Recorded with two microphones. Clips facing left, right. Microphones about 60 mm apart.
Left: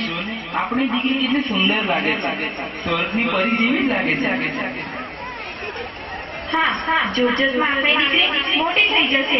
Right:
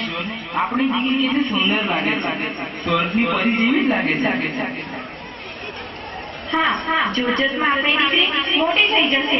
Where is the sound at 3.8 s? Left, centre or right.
Centre.